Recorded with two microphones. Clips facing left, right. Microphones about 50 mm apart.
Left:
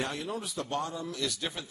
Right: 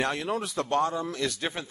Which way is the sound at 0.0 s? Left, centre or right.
Right.